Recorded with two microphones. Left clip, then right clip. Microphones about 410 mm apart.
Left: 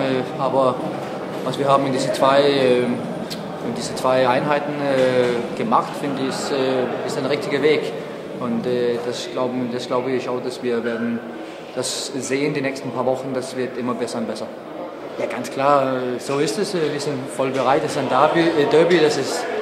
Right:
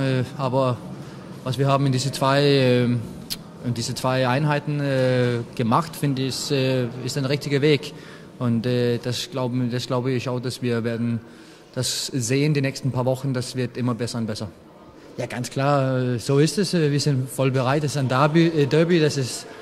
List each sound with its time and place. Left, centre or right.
0.0 s a sound: right
1.5 s speech: right
4.0 s a man's voice: right
11.8 s speech: right
15.1 s speech: right